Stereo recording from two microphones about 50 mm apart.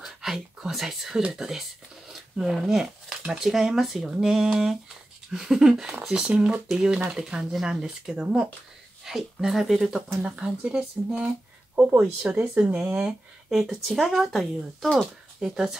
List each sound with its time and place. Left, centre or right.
0.0 s speech: centre
2.0 s a sound: centre
3.2 s speech: centre
13.5 s speech: centre
15.4 s speech: centre